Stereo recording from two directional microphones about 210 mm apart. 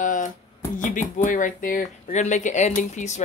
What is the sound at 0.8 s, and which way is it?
Speech, 40° left (ahead or behind).